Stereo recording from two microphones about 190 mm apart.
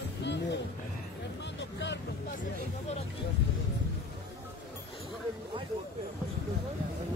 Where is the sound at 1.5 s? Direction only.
65° left (ahead or behind).